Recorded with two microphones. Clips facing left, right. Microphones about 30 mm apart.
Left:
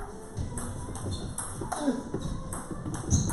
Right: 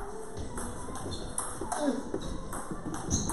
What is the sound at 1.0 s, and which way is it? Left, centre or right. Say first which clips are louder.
Ping: even; centre.